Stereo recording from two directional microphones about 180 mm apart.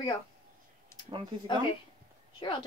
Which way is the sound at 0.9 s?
15° left (ahead or behind).